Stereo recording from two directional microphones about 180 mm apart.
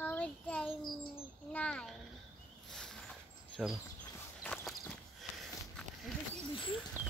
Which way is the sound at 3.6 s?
Centre (ahead or behind).